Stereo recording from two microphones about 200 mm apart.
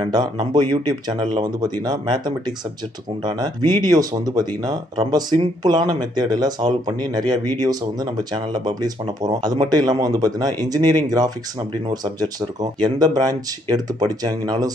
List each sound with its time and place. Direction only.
0.0 s speech: 20° right (ahead or behind)